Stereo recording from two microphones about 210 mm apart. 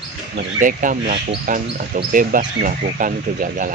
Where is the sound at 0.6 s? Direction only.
40° right (ahead or behind).